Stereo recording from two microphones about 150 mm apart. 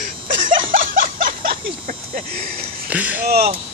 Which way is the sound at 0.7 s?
65° right (ahead or behind).